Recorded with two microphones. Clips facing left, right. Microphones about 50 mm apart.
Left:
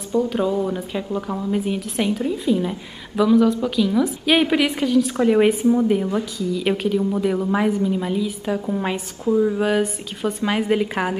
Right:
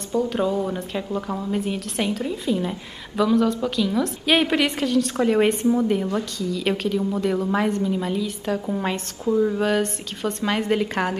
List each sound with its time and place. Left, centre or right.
0.1 s a woman's voice: centre